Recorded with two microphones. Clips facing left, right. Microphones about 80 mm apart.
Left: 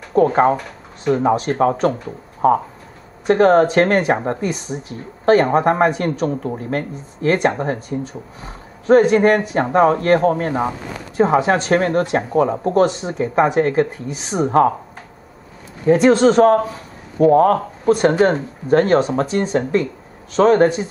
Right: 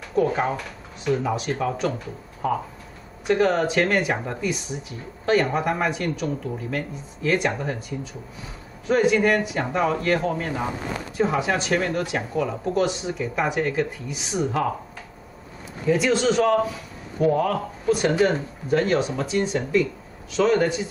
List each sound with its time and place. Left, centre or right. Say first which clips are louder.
0.1 s speech: left 8 dB; left
15.9 s speech: left 8 dB; left